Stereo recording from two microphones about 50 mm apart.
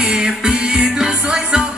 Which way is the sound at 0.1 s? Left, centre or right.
Centre.